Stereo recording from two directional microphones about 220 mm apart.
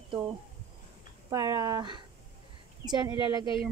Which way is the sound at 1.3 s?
15° right (ahead or behind).